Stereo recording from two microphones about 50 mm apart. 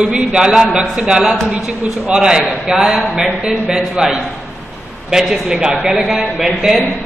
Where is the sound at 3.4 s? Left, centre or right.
Centre.